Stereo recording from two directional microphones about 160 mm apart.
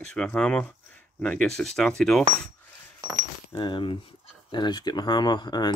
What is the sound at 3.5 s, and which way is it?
Speech, 30° left (ahead or behind).